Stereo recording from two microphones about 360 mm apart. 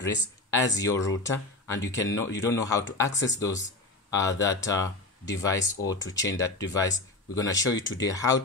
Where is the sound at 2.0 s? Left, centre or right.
Left.